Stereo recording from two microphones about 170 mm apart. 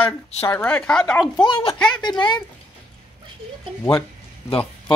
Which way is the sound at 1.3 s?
30° left (ahead or behind).